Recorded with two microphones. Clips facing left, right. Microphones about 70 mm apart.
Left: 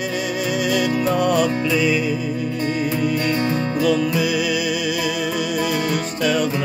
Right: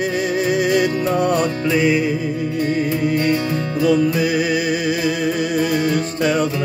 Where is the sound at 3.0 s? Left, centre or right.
Right.